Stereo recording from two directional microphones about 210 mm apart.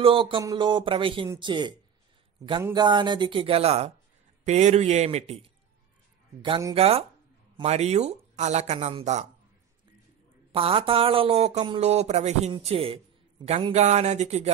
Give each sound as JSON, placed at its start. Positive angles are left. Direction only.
{"t": 0.0, "sound": "speech", "side_deg": -25}
{"t": 10.5, "sound": "speech", "side_deg": -25}